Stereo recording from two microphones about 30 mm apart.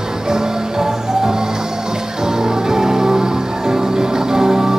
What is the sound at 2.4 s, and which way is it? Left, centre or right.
Music, centre.